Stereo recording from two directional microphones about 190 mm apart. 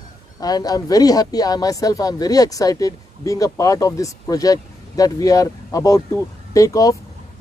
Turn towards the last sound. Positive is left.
turn(degrees=20)  # may be behind; listen again after turning